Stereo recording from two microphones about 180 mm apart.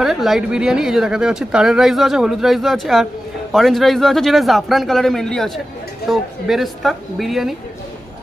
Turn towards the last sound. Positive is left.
turn(degrees=0)  # may be behind; listen again after turning